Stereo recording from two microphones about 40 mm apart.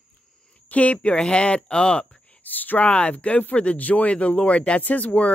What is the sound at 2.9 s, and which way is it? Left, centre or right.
Speech, left.